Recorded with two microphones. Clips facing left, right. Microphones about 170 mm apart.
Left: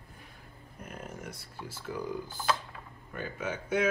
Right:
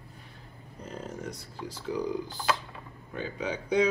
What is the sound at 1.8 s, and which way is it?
Speech, 15° right (ahead or behind).